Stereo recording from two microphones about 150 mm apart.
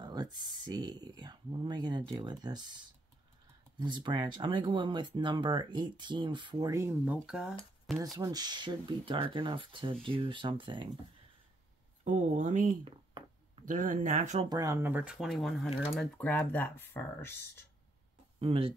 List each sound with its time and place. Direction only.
0.0 s speech: 25° right (ahead or behind)
3.8 s speech: 30° right (ahead or behind); by 7.5 s 5° right (ahead or behind)
8.2 s speech: 25° right (ahead or behind)
12.0 s speech: 55° right (ahead or behind)
12.8 s a sound: 35° right (ahead or behind)
13.7 s speech: 60° right (ahead or behind)
14.5 s speech: 20° right (ahead or behind); by 16.1 s centre (ahead or behind)
16.2 s speech: 10° left (ahead or behind)
18.4 s speech: 35° right (ahead or behind)